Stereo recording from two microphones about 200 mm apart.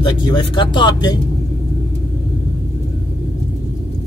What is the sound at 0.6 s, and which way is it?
Speech, 20° left (ahead or behind).